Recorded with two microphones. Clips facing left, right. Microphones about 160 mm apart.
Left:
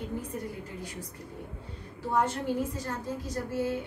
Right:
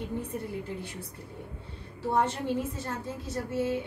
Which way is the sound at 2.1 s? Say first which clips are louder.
Even; 25° right (ahead or behind).